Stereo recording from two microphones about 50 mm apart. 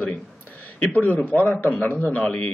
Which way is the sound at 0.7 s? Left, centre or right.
Left.